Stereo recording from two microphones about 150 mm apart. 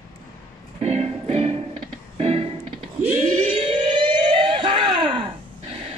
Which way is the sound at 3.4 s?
40° right (ahead or behind).